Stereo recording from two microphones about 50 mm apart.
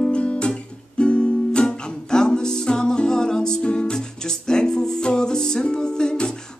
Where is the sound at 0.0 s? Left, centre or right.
Left.